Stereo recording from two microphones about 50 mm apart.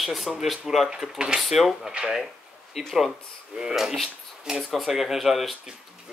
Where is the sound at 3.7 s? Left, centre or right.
Centre.